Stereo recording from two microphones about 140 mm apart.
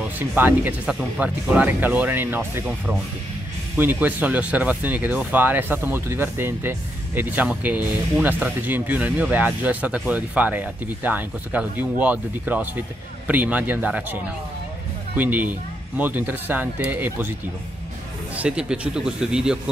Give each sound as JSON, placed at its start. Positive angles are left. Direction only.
{"t": 0.4, "sound": "speech", "side_deg": -10}
{"t": 18.3, "sound": "speech", "side_deg": -10}